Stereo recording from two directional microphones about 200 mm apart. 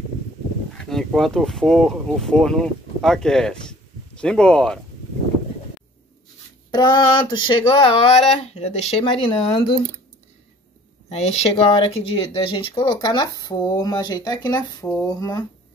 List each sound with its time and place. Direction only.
0.7 s speech: centre (ahead or behind)
6.7 s speech: 20° left (ahead or behind)
11.1 s speech: 30° left (ahead or behind)